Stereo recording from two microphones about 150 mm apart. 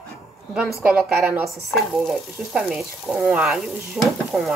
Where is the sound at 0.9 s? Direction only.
Centre (ahead or behind).